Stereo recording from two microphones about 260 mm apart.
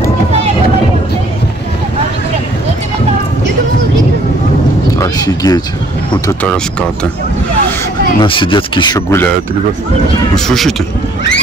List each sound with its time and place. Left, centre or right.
4.9 s a sound: centre
6.2 s speech: centre
8.2 s speech: centre
10.3 s speech: centre